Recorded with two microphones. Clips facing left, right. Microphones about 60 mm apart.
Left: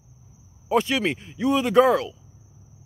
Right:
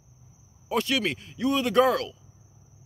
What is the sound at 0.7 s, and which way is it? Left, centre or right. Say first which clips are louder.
A man's voice: left 4 dB; centre.